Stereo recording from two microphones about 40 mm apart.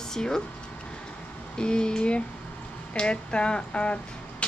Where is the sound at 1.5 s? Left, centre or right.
Left.